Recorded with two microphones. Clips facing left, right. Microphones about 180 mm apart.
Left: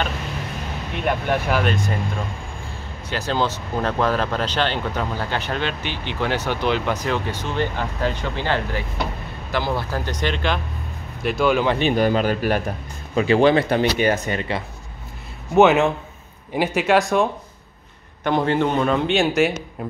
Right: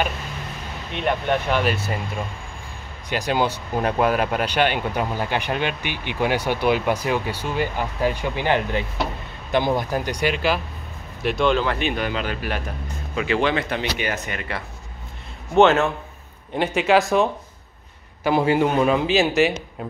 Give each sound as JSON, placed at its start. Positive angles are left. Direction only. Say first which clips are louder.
{"t": 0.9, "sound": "a man's voice", "louder": "even", "side_deg": 5}
{"t": 1.7, "sound": "speech", "louder": "left 1 dB", "side_deg": -5}
{"t": 3.1, "sound": "speech", "louder": "right 1 dB", "side_deg": -15}
{"t": 11.2, "sound": "a man's voice", "louder": "left 1 dB", "side_deg": 5}
{"t": 11.8, "sound": "speech", "louder": "left 6 dB", "side_deg": 40}
{"t": 15.5, "sound": "a man's voice", "louder": "left 1 dB", "side_deg": 10}